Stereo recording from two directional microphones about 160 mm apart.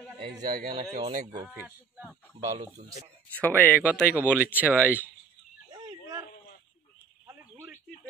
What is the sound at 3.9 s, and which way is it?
Speech, 10° right (ahead or behind).